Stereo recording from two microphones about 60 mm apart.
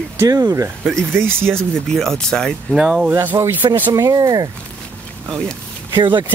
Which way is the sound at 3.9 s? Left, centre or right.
Right.